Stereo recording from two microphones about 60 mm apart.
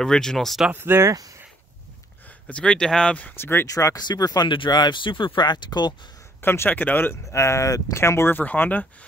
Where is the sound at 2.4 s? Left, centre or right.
Centre.